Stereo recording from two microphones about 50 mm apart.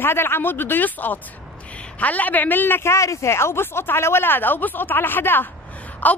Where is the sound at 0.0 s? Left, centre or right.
Left.